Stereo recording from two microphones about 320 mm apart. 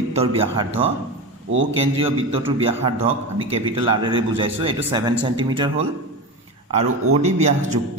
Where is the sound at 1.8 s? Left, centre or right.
Centre.